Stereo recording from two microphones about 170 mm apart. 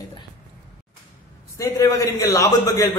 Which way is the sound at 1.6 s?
20° left (ahead or behind).